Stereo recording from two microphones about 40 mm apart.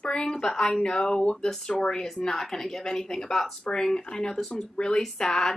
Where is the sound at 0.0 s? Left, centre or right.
Centre.